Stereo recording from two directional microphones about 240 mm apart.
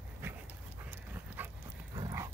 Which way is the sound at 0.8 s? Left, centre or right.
Centre.